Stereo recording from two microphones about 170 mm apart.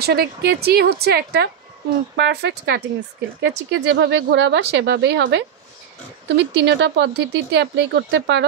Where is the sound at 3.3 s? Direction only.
90° right.